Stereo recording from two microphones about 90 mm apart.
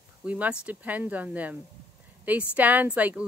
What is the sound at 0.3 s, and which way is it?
A woman's voice, 15° right (ahead or behind).